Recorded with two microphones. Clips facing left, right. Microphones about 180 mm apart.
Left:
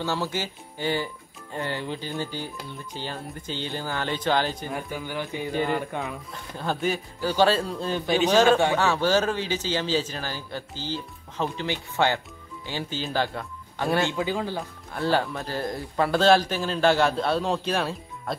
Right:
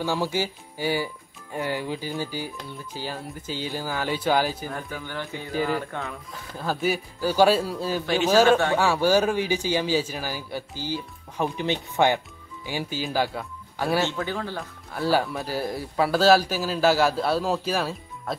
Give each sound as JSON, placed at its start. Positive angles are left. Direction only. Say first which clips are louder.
{"t": 0.0, "sound": "speech", "louder": "right 3 dB", "side_deg": -10}
{"t": 4.8, "sound": "speech", "louder": "left 2 dB", "side_deg": 10}
{"t": 5.5, "sound": "speech", "louder": "right 1 dB", "side_deg": -5}
{"t": 5.8, "sound": "speech", "louder": "left 1 dB", "side_deg": 15}
{"t": 6.3, "sound": "speech", "louder": "right 1 dB", "side_deg": -5}
{"t": 14.0, "sound": "speech", "louder": "left 2 dB", "side_deg": 15}
{"t": 14.9, "sound": "speech", "louder": "right 1 dB", "side_deg": -5}